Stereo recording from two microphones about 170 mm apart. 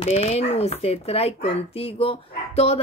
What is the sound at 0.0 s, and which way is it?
Speech, 40° left (ahead or behind).